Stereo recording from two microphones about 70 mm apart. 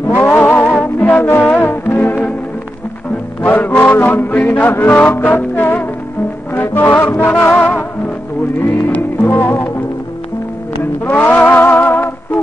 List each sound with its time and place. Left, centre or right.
0.1 s music: left
3.4 s music: left
8.9 s music: left
11.1 s a sound: left
11.8 s music: left